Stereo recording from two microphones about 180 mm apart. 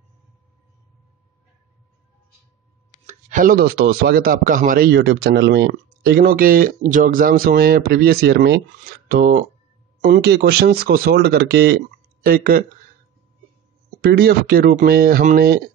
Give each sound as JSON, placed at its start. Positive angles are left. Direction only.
{"t": 3.1, "sound": "a man's voice", "side_deg": -45}
{"t": 12.3, "sound": "speech", "side_deg": -50}
{"t": 14.0, "sound": "a man's voice", "side_deg": -60}